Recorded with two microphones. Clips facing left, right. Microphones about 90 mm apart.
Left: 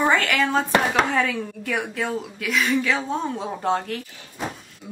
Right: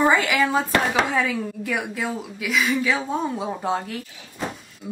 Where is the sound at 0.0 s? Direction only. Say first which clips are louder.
Right 1 dB; 10° right (ahead or behind).